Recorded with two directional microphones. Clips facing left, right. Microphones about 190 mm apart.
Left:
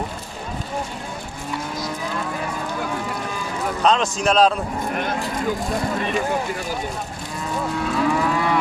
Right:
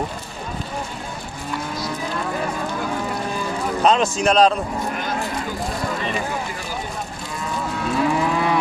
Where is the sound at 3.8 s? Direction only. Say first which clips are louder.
Right 2 dB; 5° right (ahead or behind).